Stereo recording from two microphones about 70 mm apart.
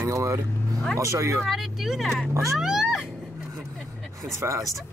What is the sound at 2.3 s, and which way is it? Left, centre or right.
Speech, right.